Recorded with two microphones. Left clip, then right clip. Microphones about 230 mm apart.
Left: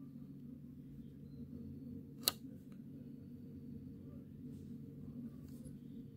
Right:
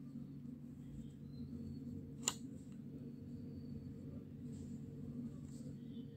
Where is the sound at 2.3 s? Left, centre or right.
Left.